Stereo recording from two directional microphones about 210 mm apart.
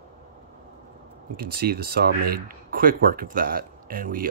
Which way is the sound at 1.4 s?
45° right (ahead or behind).